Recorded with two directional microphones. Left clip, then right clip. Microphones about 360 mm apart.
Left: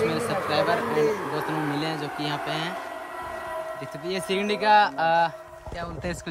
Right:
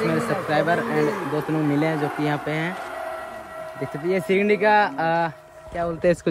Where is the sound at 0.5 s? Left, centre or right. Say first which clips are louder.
Right 2 dB; centre.